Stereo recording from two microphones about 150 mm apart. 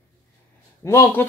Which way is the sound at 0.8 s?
20° left (ahead or behind).